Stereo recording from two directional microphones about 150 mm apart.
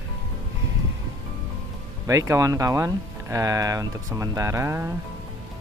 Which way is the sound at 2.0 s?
20° right (ahead or behind).